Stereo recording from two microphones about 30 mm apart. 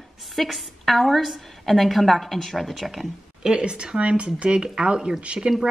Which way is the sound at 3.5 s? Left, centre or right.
Right.